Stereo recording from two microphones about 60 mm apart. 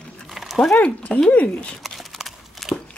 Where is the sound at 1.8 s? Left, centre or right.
Centre.